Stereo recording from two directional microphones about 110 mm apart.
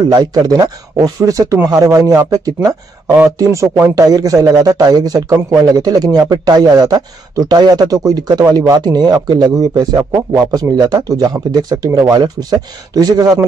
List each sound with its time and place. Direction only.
0.1 s a man's voice: 35° right (ahead or behind)